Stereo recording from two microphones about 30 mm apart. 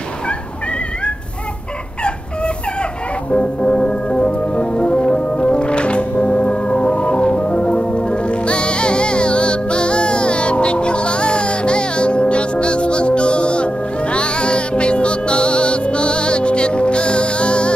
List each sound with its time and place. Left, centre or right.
3.3 s organ: left